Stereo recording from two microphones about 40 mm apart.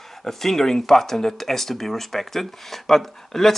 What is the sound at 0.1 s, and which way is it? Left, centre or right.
Speech, centre.